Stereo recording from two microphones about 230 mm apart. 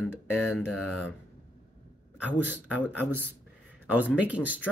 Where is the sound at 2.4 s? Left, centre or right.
Centre.